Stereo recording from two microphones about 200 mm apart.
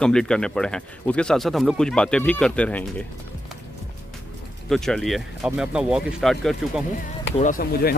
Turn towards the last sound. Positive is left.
turn(degrees=45)  # may be behind; listen again after turning